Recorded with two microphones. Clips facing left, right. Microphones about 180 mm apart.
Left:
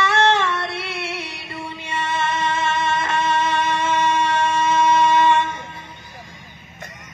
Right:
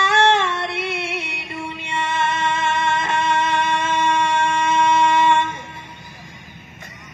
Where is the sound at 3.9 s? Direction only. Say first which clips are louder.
Left 1 dB; 10° left (ahead or behind).